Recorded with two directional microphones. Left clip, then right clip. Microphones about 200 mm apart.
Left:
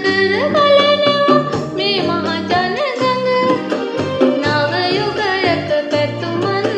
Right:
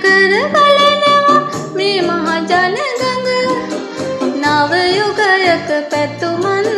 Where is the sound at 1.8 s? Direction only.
15° right (ahead or behind).